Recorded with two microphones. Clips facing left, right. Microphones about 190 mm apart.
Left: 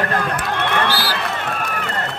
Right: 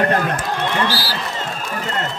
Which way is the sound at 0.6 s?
60° left (ahead or behind).